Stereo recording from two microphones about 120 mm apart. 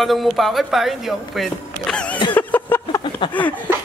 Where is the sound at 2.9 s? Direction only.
40° left (ahead or behind).